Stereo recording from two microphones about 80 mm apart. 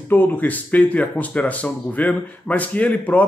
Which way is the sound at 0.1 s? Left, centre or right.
Left.